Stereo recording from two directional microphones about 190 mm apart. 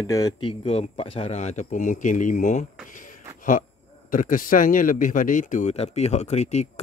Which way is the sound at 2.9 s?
45° left (ahead or behind).